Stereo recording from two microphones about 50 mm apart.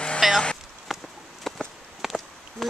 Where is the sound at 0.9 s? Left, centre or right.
Centre.